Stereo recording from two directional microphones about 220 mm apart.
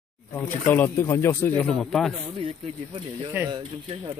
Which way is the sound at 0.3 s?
10° left (ahead or behind).